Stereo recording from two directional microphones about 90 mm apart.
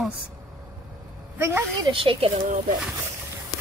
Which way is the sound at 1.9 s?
70° right (ahead or behind).